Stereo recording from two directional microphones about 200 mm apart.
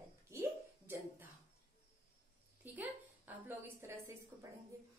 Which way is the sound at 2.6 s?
10° right (ahead or behind).